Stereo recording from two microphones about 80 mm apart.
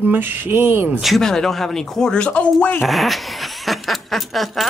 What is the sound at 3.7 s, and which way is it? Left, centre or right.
Snicker, centre.